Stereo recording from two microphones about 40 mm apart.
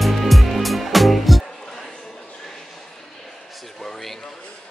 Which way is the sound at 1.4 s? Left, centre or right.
Centre.